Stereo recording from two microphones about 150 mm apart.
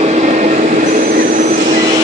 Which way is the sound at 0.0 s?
50° right (ahead or behind).